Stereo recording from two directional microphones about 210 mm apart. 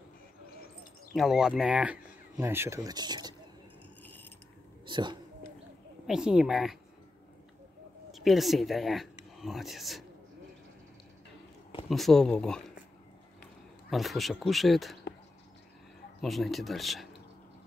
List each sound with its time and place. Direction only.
1.1 s speech: centre (ahead or behind); by 3.3 s 20° right (ahead or behind)
4.0 s mechanisms: 10° left (ahead or behind)
4.8 s a sound: 20° right (ahead or behind)
6.0 s speech: 5° right (ahead or behind)
8.1 s speech: centre (ahead or behind)
11.9 s speech: centre (ahead or behind)
13.8 s speech: centre (ahead or behind)
16.2 s speech: centre (ahead or behind)